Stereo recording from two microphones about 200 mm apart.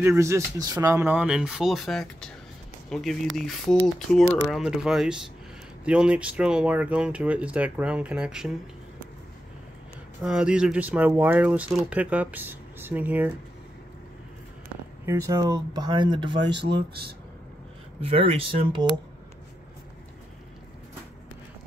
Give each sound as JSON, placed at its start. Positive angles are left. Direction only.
{"t": 0.0, "sound": "speech", "side_deg": -15}
{"t": 10.2, "sound": "speech", "side_deg": -5}
{"t": 15.0, "sound": "speech", "side_deg": -15}
{"t": 16.3, "sound": "speech", "side_deg": -60}
{"t": 18.1, "sound": "speech", "side_deg": -25}